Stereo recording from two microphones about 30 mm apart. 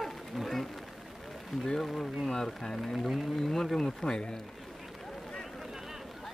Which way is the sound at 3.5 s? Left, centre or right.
Centre.